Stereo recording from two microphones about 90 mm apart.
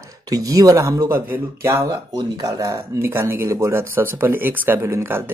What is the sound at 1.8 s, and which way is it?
Speech, 50° right (ahead or behind).